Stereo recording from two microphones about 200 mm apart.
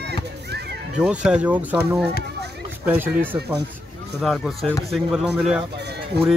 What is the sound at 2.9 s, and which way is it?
Speech, 10° right (ahead or behind).